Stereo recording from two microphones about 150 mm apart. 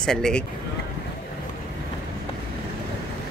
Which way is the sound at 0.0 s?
5° left (ahead or behind).